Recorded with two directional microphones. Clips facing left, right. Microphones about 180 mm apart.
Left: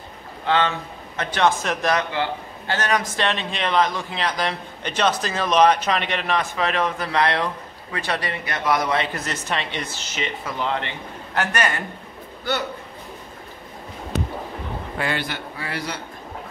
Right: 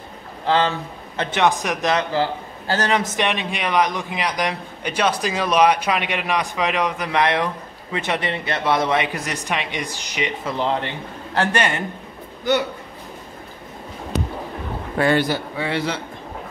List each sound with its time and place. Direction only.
0.5 s a man's voice: 30° right (ahead or behind)
1.4 s a man's voice: 15° right (ahead or behind)
2.0 s a man's voice: 35° right (ahead or behind)
2.9 s a man's voice: 20° right (ahead or behind)
8.9 s a man's voice: 15° right (ahead or behind)
10.4 s a man's voice: 30° right (ahead or behind)
15.0 s a man's voice: 35° right (ahead or behind)
15.6 s a man's voice: 25° right (ahead or behind)